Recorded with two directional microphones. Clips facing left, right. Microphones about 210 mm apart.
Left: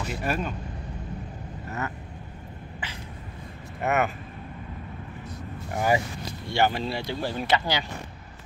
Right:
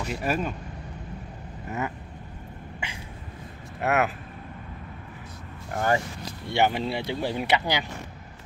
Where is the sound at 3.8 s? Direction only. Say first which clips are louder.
Right 1 dB; centre (ahead or behind).